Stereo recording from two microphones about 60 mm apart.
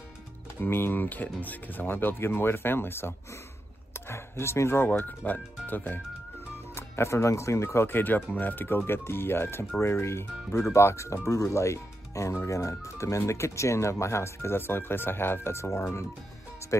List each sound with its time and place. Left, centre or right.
0.6 s speech: left
6.7 s speech: left
15.5 s speech: left